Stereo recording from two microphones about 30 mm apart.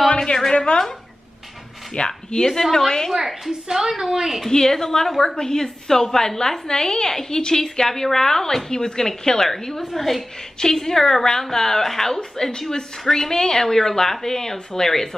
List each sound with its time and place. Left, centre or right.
0.1 s a sound: left
0.5 s a woman's voice: left
2.0 s speech: left
2.7 s speech: centre
3.1 s a woman's voice: centre
4.5 s a woman's voice: centre
10.6 s speech: centre